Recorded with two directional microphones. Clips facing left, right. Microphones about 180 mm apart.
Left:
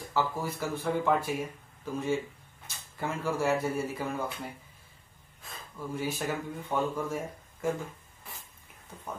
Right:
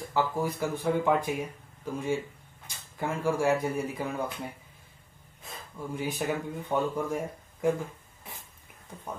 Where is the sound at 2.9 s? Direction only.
15° right (ahead or behind).